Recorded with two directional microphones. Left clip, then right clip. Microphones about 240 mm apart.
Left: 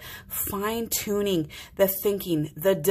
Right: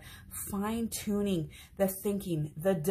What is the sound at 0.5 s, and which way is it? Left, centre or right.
A woman's voice, left.